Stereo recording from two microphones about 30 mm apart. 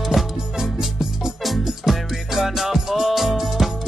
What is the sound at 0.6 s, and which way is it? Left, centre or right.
Music, centre.